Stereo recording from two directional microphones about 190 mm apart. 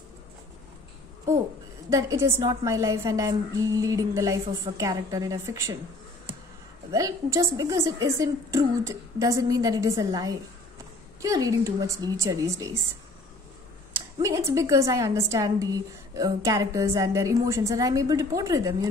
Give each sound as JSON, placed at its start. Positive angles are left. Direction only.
{"t": 1.9, "sound": "a woman's voice", "side_deg": -15}
{"t": 6.9, "sound": "a woman's voice", "side_deg": -15}
{"t": 13.9, "sound": "a woman's voice", "side_deg": -15}